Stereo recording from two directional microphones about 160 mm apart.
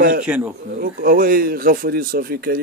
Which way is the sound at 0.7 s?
65° right (ahead or behind).